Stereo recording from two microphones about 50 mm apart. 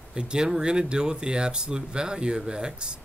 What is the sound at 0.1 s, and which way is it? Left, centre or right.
Speech, centre.